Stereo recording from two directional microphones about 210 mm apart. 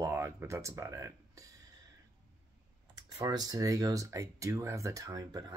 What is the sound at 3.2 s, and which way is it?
Speech, 20° right (ahead or behind).